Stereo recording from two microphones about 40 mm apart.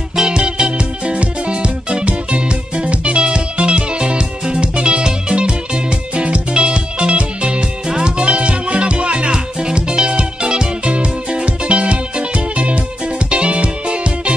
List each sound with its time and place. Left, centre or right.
0.1 s music: centre